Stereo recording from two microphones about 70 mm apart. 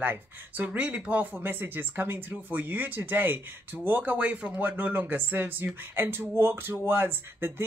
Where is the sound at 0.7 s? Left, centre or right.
Centre.